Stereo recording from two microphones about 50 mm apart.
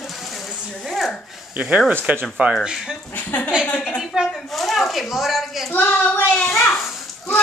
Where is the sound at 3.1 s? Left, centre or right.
Left.